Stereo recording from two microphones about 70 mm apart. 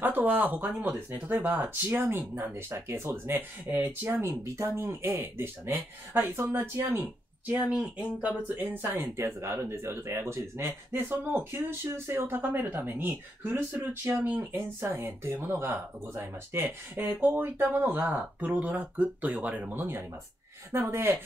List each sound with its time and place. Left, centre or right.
0.0 s speech: right
4.3 s speech: right
7.0 s speech: right
9.1 s speech: right